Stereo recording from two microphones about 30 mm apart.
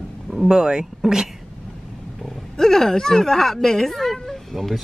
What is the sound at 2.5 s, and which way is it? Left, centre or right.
Speech, centre.